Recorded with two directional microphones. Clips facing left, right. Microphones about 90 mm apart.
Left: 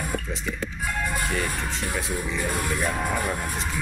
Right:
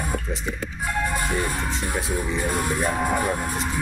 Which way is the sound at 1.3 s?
25° right (ahead or behind).